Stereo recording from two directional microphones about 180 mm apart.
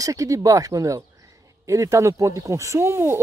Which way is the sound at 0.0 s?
20° right (ahead or behind).